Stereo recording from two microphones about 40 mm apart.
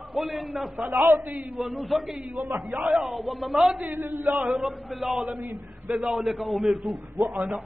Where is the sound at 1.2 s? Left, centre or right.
Right.